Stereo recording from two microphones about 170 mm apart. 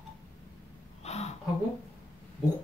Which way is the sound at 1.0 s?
40° left (ahead or behind).